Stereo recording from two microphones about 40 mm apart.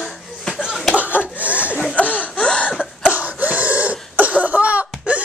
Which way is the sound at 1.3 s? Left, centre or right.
Right.